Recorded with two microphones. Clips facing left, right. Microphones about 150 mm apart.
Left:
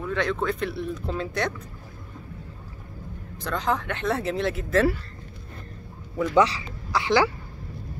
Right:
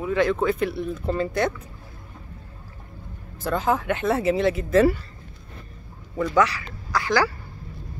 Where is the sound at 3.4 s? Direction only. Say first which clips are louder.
Right 3 dB; 5° right (ahead or behind).